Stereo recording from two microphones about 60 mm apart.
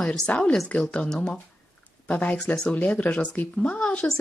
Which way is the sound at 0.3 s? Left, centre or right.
Centre.